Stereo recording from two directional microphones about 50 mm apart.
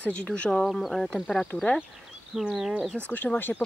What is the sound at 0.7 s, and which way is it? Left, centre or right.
Speech, centre.